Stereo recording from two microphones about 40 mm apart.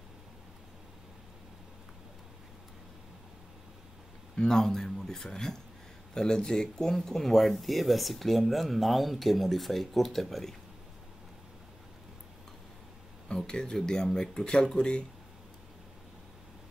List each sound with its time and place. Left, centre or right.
4.4 s speech: centre
13.3 s speech: centre